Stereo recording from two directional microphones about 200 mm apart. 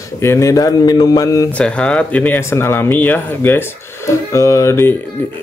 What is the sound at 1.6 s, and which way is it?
Speech, 5° left (ahead or behind).